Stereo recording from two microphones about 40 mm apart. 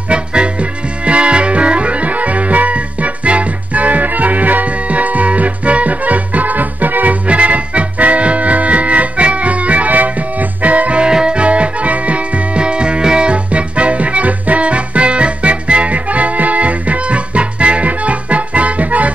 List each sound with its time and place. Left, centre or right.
0.1 s music: right
7.2 s music: right
11.1 s music: right